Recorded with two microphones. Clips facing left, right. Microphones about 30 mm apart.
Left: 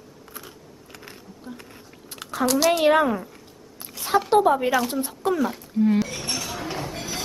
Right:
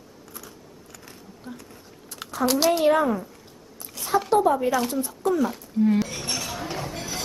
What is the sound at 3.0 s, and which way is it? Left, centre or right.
Speech, centre.